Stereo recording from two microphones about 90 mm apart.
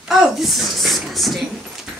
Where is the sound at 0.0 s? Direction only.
5° right (ahead or behind).